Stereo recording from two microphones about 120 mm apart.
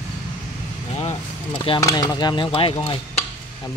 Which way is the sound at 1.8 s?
30° left (ahead or behind).